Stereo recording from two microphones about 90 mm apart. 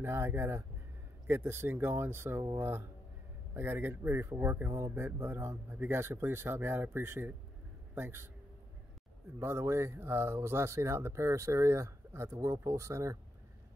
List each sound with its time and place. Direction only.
0.0 s a man's voice: 30° right (ahead or behind)
9.4 s speech: 30° right (ahead or behind)